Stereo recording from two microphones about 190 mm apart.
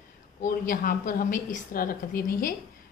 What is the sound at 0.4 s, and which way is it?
A woman's voice, 45° left (ahead or behind).